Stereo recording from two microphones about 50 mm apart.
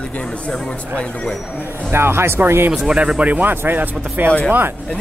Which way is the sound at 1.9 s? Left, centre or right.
Right.